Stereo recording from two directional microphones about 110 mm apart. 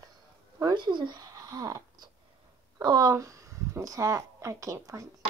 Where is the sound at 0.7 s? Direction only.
45° right (ahead or behind); by 5.1 s 30° right (ahead or behind).